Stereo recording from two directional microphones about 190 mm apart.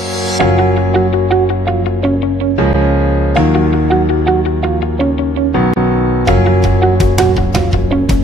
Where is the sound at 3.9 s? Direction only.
Centre (ahead or behind).